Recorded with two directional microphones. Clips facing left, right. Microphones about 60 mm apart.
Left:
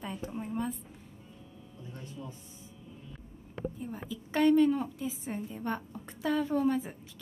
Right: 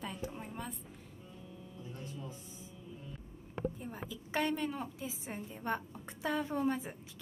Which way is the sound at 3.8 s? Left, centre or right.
Centre.